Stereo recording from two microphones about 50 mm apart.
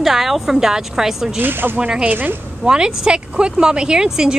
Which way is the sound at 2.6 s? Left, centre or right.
Centre.